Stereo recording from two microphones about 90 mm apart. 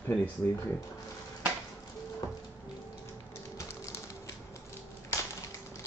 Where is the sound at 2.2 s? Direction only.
45° left (ahead or behind).